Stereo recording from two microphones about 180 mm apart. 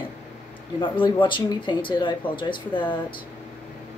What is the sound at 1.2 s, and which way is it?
Speech, 25° left (ahead or behind).